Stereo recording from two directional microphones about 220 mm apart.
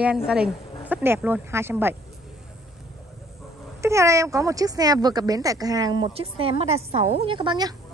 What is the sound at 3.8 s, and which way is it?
A woman's voice, 15° right (ahead or behind).